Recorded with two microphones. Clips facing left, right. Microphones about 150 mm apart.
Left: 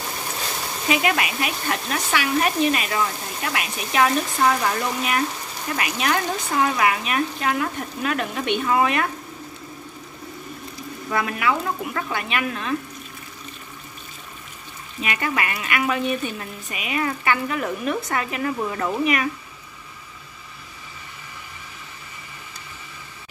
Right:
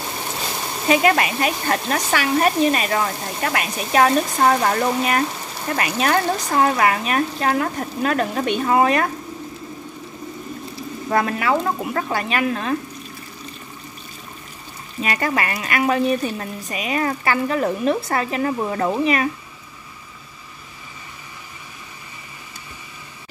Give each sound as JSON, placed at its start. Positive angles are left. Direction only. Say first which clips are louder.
{"t": 0.8, "sound": "speech", "louder": "right 5 dB", "side_deg": -40}
{"t": 11.1, "sound": "speech", "louder": "right 4 dB", "side_deg": -40}
{"t": 15.0, "sound": "speech", "louder": "right 3 dB", "side_deg": -40}